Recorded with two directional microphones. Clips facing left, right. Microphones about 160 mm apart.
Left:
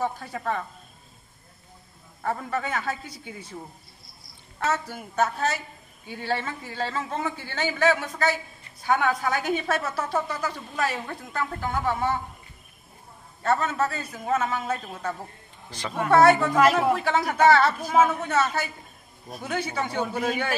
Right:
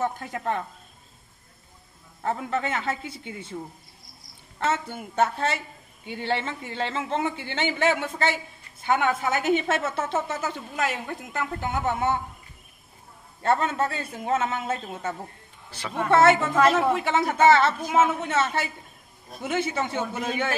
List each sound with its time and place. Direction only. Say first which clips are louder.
0.2 s speech: right 1 dB; 15° right (ahead or behind)
2.2 s a woman's voice: right 1 dB; 20° right (ahead or behind)
4.8 s a woman's voice: right 1 dB; 25° right (ahead or behind)
13.4 s a woman's voice: right 1 dB; 25° right (ahead or behind)
15.7 s speech: left 2 dB; 10° right (ahead or behind)
16.3 s a woman's voice: left 1 dB; 25° right (ahead or behind)
16.5 s speech: even; 5° left (ahead or behind)
16.9 s a woman's voice: even; 20° right (ahead or behind)